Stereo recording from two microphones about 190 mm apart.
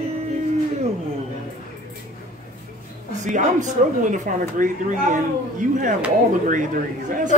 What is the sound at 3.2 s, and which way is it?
Speech, 40° right (ahead or behind).